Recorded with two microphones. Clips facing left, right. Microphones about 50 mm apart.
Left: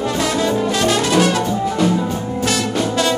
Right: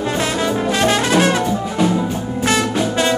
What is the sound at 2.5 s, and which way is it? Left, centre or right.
Music, right.